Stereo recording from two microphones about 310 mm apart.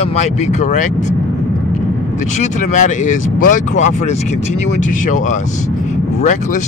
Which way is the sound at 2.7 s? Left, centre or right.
Left.